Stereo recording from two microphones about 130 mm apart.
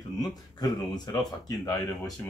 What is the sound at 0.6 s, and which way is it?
Speech, 30° left (ahead or behind).